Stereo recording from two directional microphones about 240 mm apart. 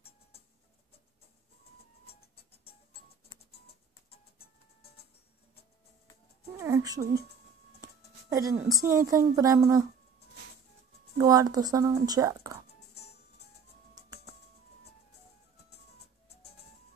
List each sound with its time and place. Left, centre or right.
2.0 s music: left
6.6 s speech: centre
7.8 s music: centre
8.8 s speech: centre
11.1 s speech: centre